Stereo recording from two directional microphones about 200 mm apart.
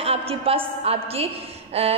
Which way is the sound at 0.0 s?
30° right (ahead or behind).